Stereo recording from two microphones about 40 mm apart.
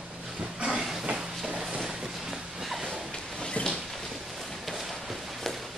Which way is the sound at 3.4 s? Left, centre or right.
Left.